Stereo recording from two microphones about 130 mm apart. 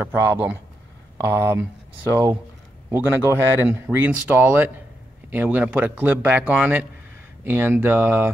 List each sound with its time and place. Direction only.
0.0 s speech: 15° right (ahead or behind)